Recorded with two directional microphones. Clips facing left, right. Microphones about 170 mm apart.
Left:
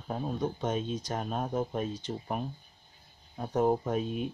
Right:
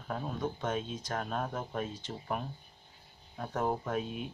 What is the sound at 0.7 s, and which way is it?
Speech, 35° left (ahead or behind).